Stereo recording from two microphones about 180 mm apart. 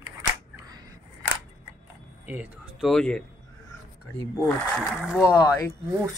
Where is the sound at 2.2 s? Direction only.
10° right (ahead or behind).